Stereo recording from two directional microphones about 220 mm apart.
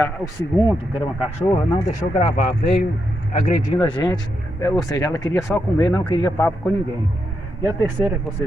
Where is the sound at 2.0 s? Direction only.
25° left (ahead or behind).